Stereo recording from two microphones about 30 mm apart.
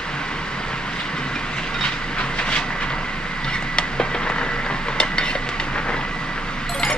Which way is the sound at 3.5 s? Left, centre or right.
Left.